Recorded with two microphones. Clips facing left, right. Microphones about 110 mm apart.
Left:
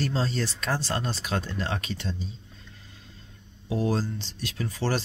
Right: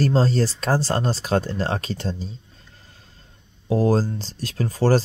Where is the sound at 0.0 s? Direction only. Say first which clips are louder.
Right 8 dB; 40° right (ahead or behind).